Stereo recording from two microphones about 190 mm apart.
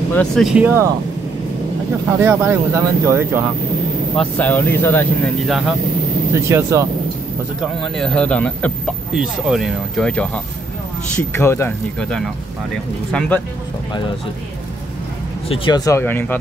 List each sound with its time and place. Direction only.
0.1 s speech: 5° left (ahead or behind)
2.1 s speech: 15° right (ahead or behind)
4.2 s speech: 5° left (ahead or behind)
6.3 s speech: 15° right (ahead or behind)
7.6 s speech: 5° left (ahead or behind)
13.3 s speech: 10° left (ahead or behind)
15.4 s speech: 30° left (ahead or behind); by 16.3 s 10° left (ahead or behind)